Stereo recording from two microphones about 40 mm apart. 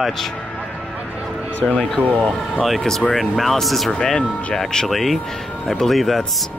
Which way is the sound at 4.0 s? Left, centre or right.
Centre.